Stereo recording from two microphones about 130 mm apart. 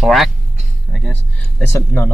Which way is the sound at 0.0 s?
Centre (ahead or behind).